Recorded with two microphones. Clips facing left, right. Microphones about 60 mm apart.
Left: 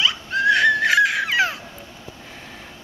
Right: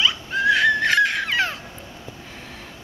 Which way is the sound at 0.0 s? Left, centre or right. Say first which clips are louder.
Left 1 dB; centre.